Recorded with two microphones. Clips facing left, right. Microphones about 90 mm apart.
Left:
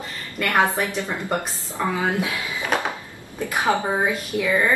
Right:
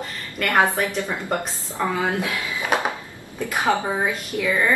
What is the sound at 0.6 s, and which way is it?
Speech, 20° left (ahead or behind).